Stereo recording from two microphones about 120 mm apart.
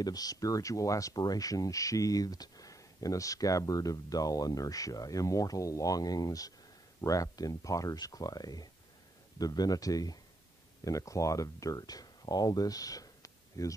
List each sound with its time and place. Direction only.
0.0 s speech: 30° left (ahead or behind)